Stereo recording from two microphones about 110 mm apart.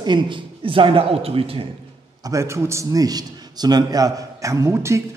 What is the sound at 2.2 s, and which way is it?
A man's voice, 25° right (ahead or behind).